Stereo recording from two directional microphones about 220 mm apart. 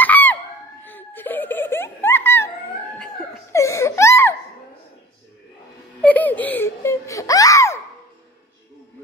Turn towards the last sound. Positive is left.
turn(degrees=15)  # may be behind; listen again after turning